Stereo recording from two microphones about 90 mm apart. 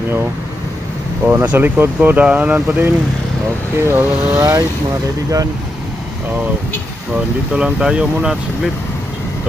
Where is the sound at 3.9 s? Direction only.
30° right (ahead or behind).